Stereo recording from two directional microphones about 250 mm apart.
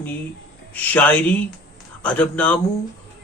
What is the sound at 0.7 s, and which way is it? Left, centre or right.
Speech, centre.